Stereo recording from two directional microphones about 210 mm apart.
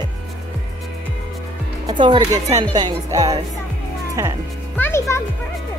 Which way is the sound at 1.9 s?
20° right (ahead or behind).